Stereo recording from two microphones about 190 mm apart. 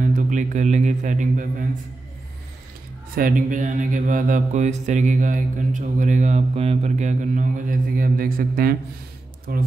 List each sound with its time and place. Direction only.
0.0 s speech: 40° right (ahead or behind)
3.2 s mantra: 45° right (ahead or behind)
9.5 s speech: 50° right (ahead or behind)